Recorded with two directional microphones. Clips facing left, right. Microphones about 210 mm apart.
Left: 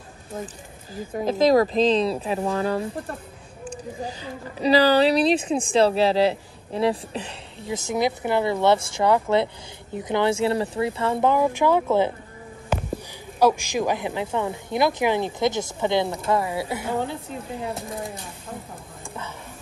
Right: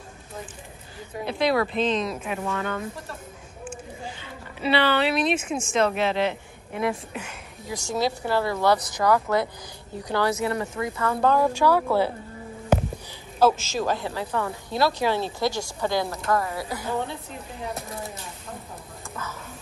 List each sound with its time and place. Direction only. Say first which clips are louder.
0.9 s a woman's voice: left 6 dB; 40° left (ahead or behind); by 12.1 s 20° left (ahead or behind)
13.4 s a woman's voice: left 1 dB; 15° left (ahead or behind)